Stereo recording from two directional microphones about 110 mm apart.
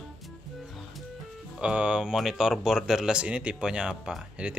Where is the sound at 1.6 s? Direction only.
10° right (ahead or behind).